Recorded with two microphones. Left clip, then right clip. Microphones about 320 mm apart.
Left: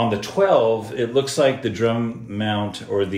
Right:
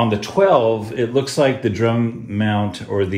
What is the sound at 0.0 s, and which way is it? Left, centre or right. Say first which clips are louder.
A man's voice: right 3 dB; centre.